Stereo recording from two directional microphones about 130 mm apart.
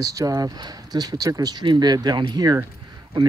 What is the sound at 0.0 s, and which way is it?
Speech, 25° right (ahead or behind).